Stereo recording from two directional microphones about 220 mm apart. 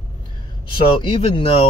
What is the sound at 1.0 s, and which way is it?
Speech, 25° left (ahead or behind).